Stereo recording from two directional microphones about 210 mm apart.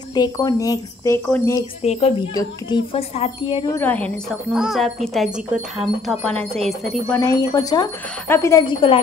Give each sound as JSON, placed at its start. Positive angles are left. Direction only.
{"t": 0.1, "sound": "speech", "side_deg": 20}
{"t": 1.8, "sound": "speech", "side_deg": 30}
{"t": 3.7, "sound": "speech", "side_deg": 10}
{"t": 7.2, "sound": "speech", "side_deg": 20}